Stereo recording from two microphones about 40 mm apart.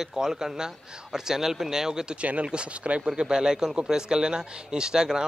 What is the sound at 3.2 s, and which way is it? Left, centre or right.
Speech, centre.